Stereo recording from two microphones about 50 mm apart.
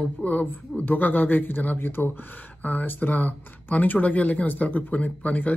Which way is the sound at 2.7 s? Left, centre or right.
Left.